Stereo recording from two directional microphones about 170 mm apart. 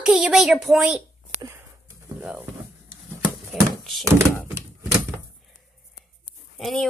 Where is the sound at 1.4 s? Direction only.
15° right (ahead or behind).